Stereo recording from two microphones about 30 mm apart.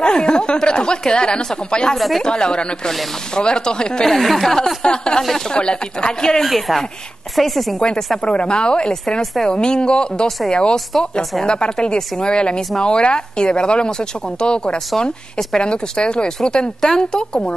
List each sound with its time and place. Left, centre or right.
0.0 s a woman's voice: left
2.0 s speech: centre
2.2 s a woman's voice: left
4.0 s speech: centre
4.8 s a woman's voice: left
6.4 s speech: centre
8.2 s a woman's voice: left